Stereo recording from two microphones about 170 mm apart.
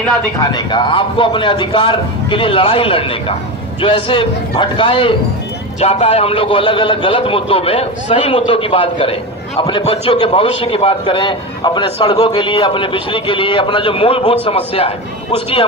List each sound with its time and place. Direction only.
0.5 s a man's voice: 25° left (ahead or behind)